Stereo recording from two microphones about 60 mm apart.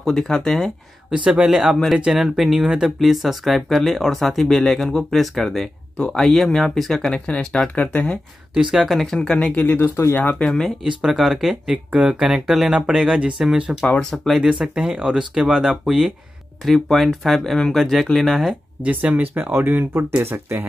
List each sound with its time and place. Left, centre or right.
0.0 s speech: centre
1.1 s speech: centre
7.2 s speech: centre
8.6 s speech: centre
9.8 s speech: left
10.4 s speech: centre
10.8 s speech: centre
11.7 s speech: right
12.3 s speech: centre
14.4 s speech: centre
18.9 s speech: right